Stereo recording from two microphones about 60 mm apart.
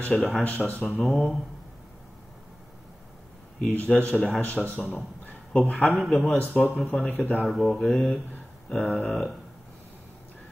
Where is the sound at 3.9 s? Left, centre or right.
Centre.